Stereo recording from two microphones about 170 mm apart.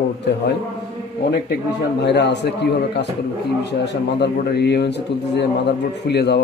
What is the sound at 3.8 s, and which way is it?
Speech, 80° left.